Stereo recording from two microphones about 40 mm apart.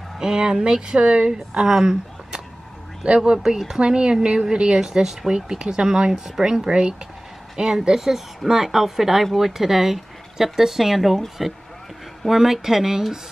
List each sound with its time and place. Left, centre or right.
0.2 s speech: centre
3.8 s a woman's voice: right
7.8 s speech: centre